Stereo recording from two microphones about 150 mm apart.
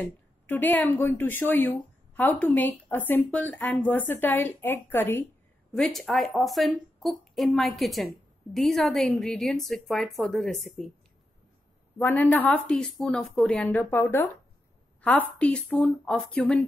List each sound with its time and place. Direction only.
0.0 s a woman's voice: 10° left (ahead or behind)
5.7 s a woman's voice: centre (ahead or behind)
12.0 s a woman's voice: 10° left (ahead or behind)
13.7 s a woman's voice: 15° left (ahead or behind)